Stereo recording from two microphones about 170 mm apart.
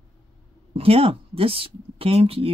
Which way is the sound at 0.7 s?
35° right (ahead or behind).